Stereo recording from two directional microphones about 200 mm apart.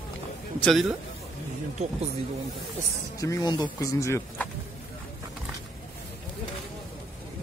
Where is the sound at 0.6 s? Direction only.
Centre (ahead or behind).